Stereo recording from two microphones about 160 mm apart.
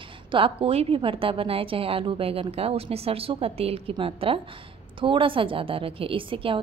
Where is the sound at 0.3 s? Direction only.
35° right (ahead or behind).